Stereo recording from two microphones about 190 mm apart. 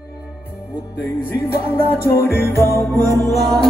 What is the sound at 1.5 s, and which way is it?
Music, 15° left (ahead or behind).